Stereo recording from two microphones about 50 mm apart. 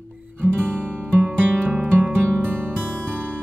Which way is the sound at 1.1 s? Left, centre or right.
Right.